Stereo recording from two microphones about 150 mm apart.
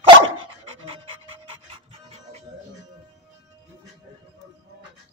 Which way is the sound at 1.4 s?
40° right (ahead or behind).